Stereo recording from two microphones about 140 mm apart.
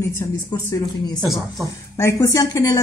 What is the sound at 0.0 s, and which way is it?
A woman's voice, 20° left (ahead or behind).